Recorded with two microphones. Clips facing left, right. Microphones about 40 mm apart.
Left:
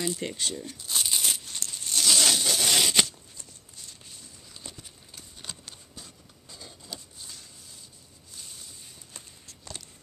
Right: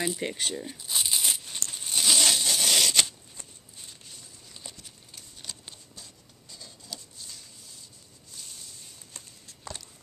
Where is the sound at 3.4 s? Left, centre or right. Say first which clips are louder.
Right 3 dB; right.